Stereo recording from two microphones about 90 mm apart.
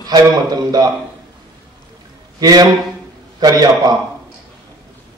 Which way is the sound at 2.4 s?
45° right (ahead or behind).